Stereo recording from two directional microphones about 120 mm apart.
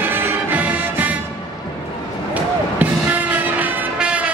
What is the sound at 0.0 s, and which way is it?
Music, 20° right (ahead or behind).